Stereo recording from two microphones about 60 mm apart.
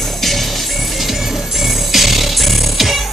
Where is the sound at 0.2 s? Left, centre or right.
Centre.